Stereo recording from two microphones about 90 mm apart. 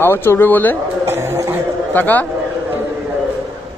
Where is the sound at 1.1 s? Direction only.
25° right (ahead or behind).